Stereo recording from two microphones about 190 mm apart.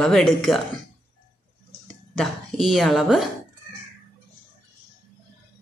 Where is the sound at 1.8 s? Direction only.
Centre (ahead or behind).